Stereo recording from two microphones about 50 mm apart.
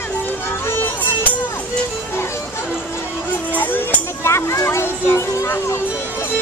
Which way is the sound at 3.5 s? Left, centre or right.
Left.